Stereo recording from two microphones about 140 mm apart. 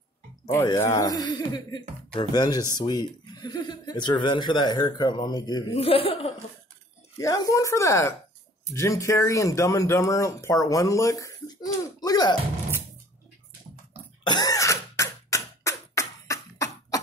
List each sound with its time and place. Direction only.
0.7 s speech: 20° left (ahead or behind)
5.8 s speech: 40° left (ahead or behind)
7.2 s speech: 25° left (ahead or behind)
14.2 s cough: 30° left (ahead or behind)